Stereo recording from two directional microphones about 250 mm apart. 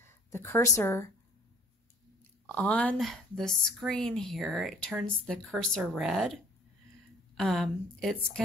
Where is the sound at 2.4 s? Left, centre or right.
Centre.